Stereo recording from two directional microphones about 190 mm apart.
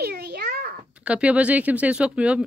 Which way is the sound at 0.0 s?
60° right (ahead or behind).